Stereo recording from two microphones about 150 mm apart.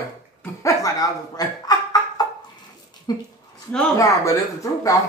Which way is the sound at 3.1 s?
25° left (ahead or behind).